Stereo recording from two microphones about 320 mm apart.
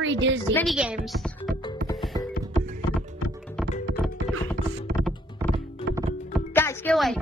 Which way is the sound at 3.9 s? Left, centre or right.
Centre.